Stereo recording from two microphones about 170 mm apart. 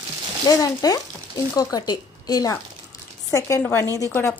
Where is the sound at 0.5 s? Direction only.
20° left (ahead or behind).